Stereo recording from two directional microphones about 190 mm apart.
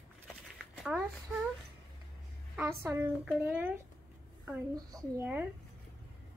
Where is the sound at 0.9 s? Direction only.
5° right (ahead or behind).